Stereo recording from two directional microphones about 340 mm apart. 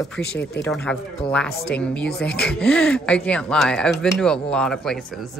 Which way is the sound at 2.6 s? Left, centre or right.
Centre.